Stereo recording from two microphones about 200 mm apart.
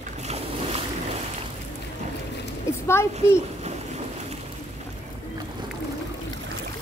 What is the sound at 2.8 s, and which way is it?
Speech, 15° left (ahead or behind).